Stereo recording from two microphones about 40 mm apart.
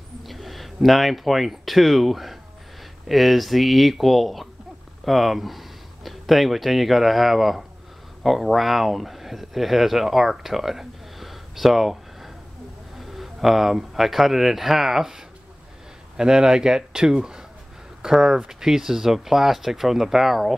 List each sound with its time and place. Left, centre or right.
0.2 s speech: centre